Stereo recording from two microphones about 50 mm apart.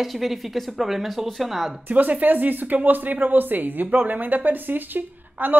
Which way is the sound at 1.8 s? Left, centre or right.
Right.